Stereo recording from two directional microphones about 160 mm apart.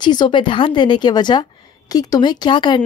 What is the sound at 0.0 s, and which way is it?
A woman's voice, 25° left (ahead or behind).